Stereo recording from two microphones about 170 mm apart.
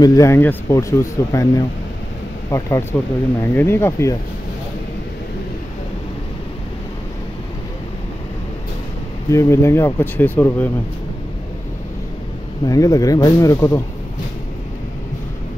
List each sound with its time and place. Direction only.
0.0 s speech: 20° left (ahead or behind)
9.3 s speech: 15° left (ahead or behind)
12.6 s speech: 20° left (ahead or behind)